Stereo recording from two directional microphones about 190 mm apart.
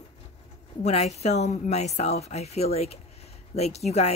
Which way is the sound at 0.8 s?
35° left (ahead or behind).